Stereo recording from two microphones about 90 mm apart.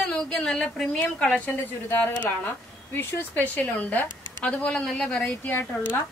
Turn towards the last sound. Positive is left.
turn(degrees=25)  # may be behind; listen again after turning